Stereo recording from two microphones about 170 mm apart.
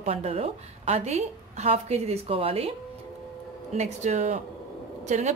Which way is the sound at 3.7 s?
40° right (ahead or behind).